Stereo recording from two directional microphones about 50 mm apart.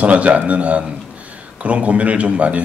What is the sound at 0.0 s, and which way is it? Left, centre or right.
A man's voice, right.